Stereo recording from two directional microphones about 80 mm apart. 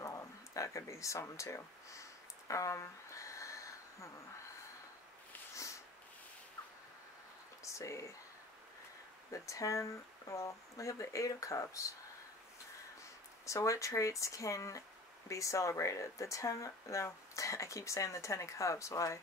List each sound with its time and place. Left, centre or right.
0.0 s a sound: left
7.6 s speech: left
9.3 s speech: left
13.5 s speech: left